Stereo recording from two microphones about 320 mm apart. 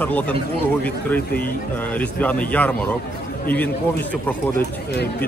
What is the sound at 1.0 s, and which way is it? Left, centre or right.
A man's voice, centre.